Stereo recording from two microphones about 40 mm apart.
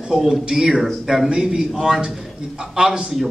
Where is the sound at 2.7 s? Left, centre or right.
Right.